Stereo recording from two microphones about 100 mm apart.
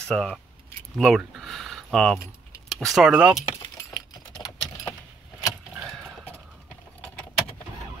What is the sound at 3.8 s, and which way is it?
Typing, 40° left (ahead or behind).